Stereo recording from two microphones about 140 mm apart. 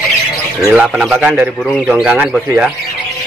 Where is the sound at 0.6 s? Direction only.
5° right (ahead or behind).